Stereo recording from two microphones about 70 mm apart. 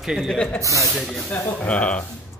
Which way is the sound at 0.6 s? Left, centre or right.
Right.